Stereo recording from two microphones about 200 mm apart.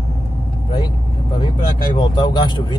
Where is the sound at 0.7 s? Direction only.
25° left (ahead or behind).